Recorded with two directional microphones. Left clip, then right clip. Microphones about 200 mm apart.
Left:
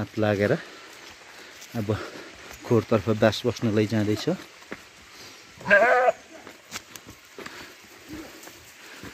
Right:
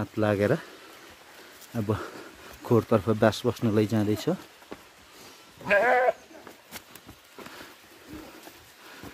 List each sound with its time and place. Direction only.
0.0 s speech: centre (ahead or behind)
1.8 s speech: centre (ahead or behind)
5.7 s sheep: 20° right (ahead or behind)